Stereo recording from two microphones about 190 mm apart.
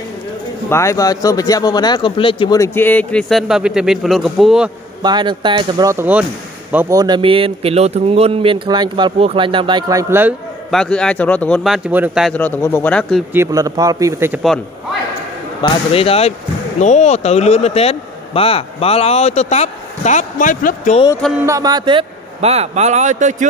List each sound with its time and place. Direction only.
0.7 s a man's voice: 15° left (ahead or behind); by 4.6 s centre (ahead or behind)
5.0 s a man's voice: 25° right (ahead or behind)
10.7 s speech: 5° left (ahead or behind)
12.4 s a man's voice: 10° left (ahead or behind)
13.3 s a man's voice: 15° right (ahead or behind)
15.6 s speech: 30° left (ahead or behind)
21.5 s a man's voice: 20° right (ahead or behind); by 23.3 s 40° right (ahead or behind)